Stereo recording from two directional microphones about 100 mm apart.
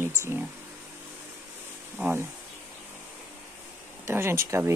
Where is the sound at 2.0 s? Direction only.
25° right (ahead or behind).